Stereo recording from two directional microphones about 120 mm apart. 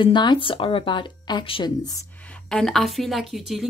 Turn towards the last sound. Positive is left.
turn(degrees=0)  # may be behind; listen again after turning